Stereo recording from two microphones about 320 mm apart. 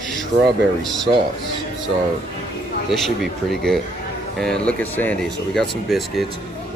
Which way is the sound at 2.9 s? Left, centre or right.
Centre.